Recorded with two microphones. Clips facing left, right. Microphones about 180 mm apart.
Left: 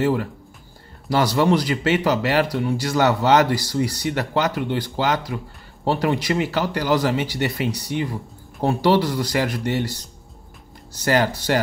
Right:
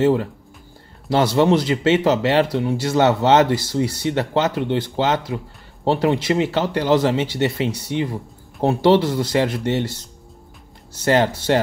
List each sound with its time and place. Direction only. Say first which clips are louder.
0.0 s speech: right 4 dB; 25° right (ahead or behind)